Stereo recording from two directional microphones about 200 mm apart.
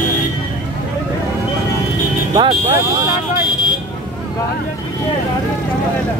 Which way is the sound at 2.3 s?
25° right (ahead or behind).